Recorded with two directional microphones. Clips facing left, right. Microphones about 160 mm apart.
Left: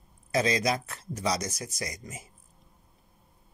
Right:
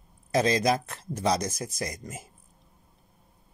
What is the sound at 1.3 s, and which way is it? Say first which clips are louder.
Speech: right 4 dB; 55° right (ahead or behind).